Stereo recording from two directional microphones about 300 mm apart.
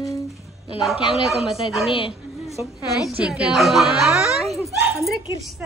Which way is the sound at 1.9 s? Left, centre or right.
Centre.